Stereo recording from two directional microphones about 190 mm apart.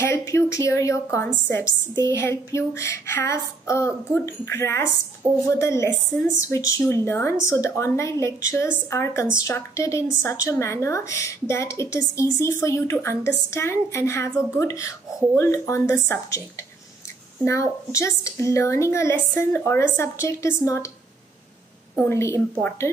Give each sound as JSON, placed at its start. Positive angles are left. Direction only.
{"t": 0.0, "sound": "a sound", "side_deg": 15}
{"t": 1.5, "sound": "a woman's voice", "side_deg": 15}
{"t": 22.1, "sound": "a woman's voice", "side_deg": 15}